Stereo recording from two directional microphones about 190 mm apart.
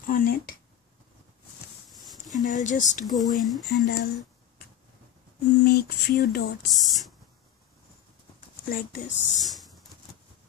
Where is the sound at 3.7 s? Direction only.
55° left (ahead or behind).